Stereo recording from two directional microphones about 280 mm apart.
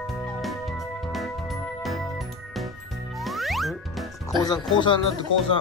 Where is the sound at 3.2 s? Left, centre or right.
Centre.